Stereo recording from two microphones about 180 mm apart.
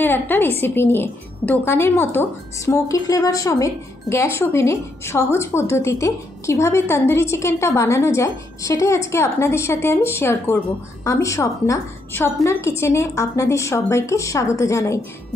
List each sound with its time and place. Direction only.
0.0 s a woman's voice: 10° left (ahead or behind)